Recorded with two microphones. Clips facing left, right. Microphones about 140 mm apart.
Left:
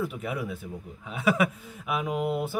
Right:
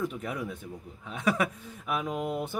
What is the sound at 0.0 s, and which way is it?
Speech, 10° left (ahead or behind).